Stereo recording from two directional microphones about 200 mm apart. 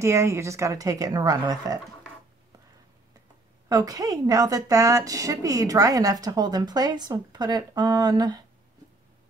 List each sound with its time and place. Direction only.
0.0 s speech: 15° right (ahead or behind)
3.6 s speech: 15° right (ahead or behind)